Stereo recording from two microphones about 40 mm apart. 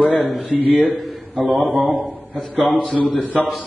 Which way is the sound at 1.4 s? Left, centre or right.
Centre.